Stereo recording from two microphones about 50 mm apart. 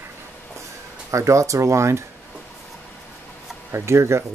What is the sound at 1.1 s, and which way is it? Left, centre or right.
Speech, right.